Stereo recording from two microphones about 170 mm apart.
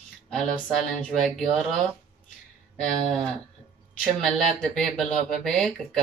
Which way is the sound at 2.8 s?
5° left (ahead or behind).